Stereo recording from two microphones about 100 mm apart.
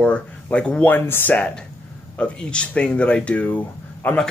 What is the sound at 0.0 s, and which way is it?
Speech, 10° left (ahead or behind).